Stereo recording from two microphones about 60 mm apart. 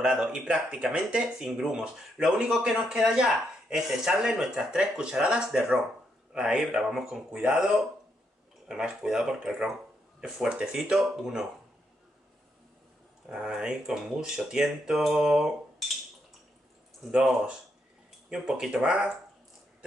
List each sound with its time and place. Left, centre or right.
0.0 s speech: centre
8.6 s speech: centre
10.8 s speech: centre
13.3 s speech: centre
17.1 s speech: centre